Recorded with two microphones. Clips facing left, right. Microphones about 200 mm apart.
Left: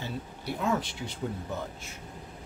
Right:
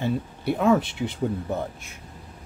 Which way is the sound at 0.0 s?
60° right (ahead or behind).